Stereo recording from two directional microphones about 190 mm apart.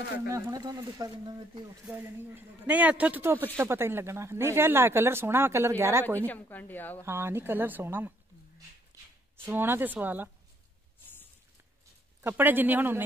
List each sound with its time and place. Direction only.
0.3 s speech: 20° right (ahead or behind)
1.9 s a man's voice: 10° right (ahead or behind)
6.0 s a woman's voice: 10° left (ahead or behind)
7.1 s a man's voice: 10° right (ahead or behind)
9.4 s a man's voice: 10° right (ahead or behind)
12.2 s a man's voice: 10° right (ahead or behind)